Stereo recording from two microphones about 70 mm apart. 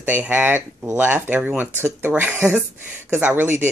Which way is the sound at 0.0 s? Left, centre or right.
Right.